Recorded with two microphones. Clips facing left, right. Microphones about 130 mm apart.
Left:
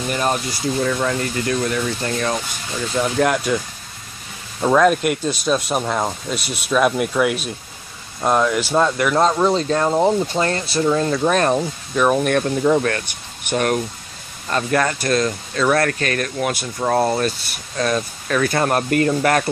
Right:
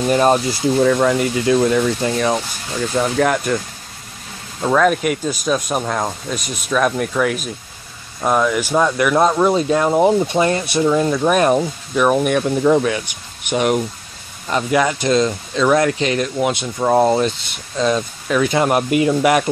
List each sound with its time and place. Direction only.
0.1 s speech: 30° right (ahead or behind)
1.0 s speech: 15° right (ahead or behind)
3.2 s speech: centre (ahead or behind)
4.6 s speech: 5° left (ahead or behind)
8.5 s speech: 15° right (ahead or behind)